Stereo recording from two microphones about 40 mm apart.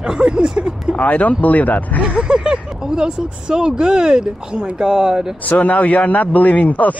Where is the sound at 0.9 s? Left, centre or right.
Left.